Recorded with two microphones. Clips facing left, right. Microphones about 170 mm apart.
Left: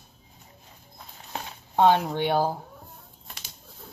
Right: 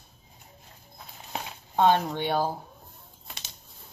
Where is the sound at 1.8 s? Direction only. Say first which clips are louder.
Left 2 dB; 15° left (ahead or behind).